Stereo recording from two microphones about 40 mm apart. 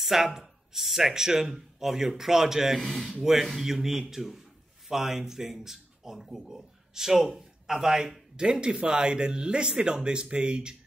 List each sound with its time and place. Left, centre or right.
0.0 s a man's voice: centre
8.4 s speech: right